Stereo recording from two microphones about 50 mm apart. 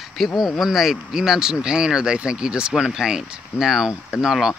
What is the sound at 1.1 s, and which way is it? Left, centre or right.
Speech, centre.